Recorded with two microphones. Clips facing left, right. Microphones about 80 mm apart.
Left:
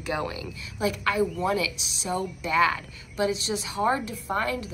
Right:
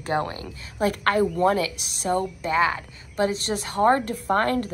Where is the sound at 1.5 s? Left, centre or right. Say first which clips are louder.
Right 3 dB; right.